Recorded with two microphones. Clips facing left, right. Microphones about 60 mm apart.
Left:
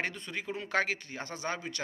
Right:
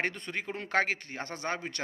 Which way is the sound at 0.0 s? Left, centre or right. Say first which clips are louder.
Right 2 dB; right.